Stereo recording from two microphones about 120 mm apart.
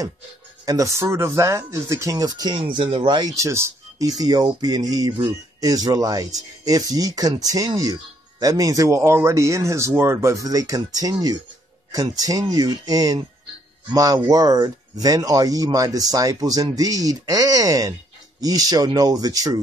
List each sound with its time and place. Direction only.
0.7 s speech: 25° right (ahead or behind)